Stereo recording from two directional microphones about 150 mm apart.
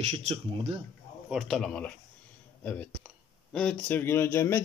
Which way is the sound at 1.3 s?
Centre (ahead or behind).